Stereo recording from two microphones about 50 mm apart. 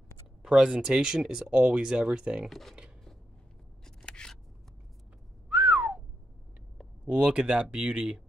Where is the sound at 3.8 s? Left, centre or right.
Centre.